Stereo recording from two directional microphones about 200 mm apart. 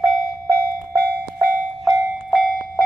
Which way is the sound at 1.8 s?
Centre (ahead or behind).